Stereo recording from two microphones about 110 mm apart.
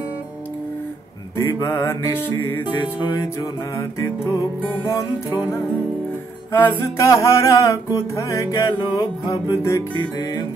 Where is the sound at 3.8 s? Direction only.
25° left (ahead or behind).